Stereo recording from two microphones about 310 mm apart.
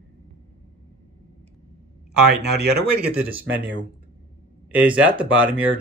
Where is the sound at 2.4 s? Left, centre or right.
Right.